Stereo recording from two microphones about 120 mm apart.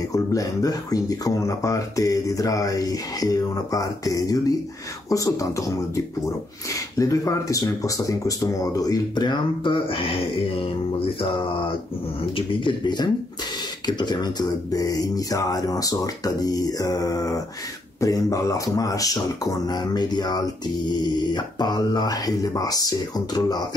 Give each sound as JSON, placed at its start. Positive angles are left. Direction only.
{"t": 0.1, "sound": "speech", "side_deg": 30}
{"t": 6.7, "sound": "speech", "side_deg": 25}
{"t": 11.0, "sound": "music", "side_deg": 50}
{"t": 12.4, "sound": "speech", "side_deg": 40}